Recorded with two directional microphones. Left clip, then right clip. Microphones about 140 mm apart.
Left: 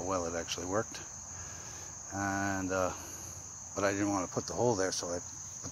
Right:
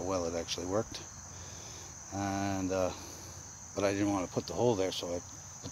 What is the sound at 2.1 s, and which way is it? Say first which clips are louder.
Cricket: left 1 dB; 10° right (ahead or behind).